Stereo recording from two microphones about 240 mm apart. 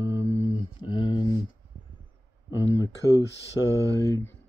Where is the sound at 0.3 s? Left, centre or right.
Centre.